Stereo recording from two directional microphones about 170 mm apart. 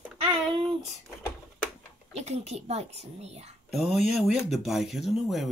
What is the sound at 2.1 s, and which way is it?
A woman's voice, 40° right (ahead or behind).